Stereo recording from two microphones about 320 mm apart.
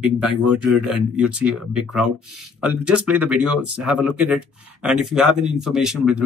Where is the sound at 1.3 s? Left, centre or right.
Centre.